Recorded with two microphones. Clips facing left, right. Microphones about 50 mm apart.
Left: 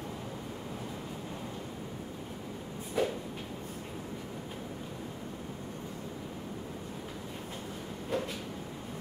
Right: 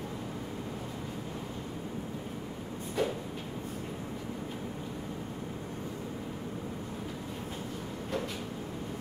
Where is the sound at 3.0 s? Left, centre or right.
Centre.